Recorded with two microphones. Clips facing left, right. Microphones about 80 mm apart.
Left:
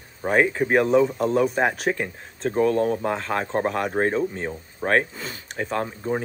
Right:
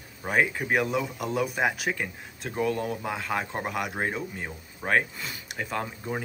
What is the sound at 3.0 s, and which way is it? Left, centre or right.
Speech, centre.